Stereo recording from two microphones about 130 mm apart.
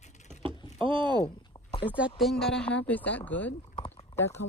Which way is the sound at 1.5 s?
35° left (ahead or behind).